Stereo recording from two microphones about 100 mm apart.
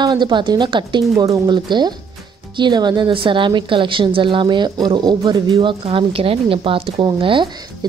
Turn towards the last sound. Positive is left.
turn(degrees=-55)  # may be behind; listen again after turning